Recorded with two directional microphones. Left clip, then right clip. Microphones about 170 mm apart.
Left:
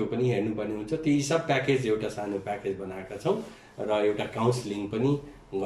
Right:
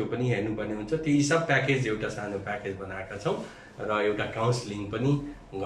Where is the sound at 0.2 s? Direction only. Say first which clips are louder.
Left 2 dB; 20° left (ahead or behind).